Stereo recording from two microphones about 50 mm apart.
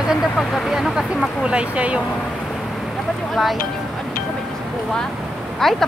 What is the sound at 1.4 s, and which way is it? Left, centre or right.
Speech, right.